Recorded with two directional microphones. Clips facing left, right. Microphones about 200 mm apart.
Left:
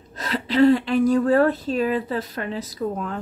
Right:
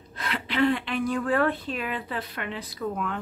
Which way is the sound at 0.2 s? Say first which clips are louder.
Left 7 dB; 40° left (ahead or behind).